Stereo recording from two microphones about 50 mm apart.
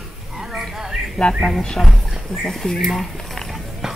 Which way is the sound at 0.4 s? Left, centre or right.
Centre.